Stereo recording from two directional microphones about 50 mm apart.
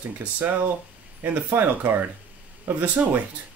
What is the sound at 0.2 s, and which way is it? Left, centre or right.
Speech, right.